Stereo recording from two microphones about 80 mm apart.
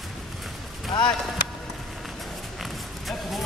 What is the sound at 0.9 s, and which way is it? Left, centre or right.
Speech, left.